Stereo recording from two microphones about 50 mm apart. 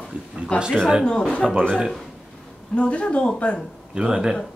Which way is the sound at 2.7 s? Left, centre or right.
Left.